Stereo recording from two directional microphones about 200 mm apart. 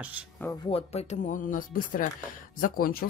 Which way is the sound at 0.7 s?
30° left (ahead or behind).